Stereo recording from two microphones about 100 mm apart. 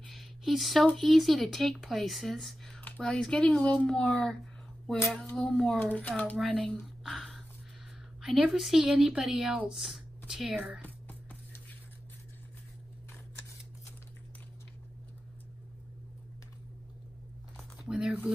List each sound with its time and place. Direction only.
0.0 s a sound: centre (ahead or behind)
0.9 s speech: centre (ahead or behind)
7.0 s a sound: 5° left (ahead or behind)
8.2 s a woman's voice: 10° right (ahead or behind)
10.8 s music: 15° left (ahead or behind)
17.8 s speech: 5° right (ahead or behind)